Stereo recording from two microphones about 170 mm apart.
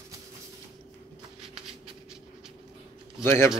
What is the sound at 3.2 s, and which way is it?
Speech, 15° left (ahead or behind).